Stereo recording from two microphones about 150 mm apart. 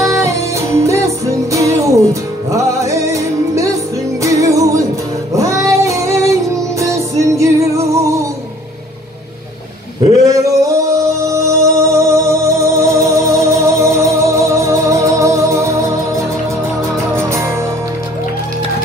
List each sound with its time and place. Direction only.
0.0 s music: 20° right (ahead or behind)
9.9 s male singing: 25° right (ahead or behind)
16.9 s music: 20° right (ahead or behind)